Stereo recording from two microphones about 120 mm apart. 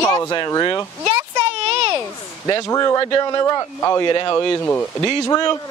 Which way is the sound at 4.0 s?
40° left (ahead or behind).